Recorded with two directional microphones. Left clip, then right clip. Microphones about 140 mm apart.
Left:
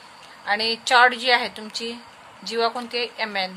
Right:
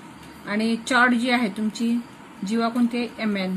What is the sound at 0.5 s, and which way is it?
A woman's voice, 75° left (ahead or behind).